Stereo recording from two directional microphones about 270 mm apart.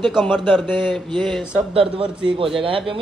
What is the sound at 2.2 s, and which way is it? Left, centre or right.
Speech, centre.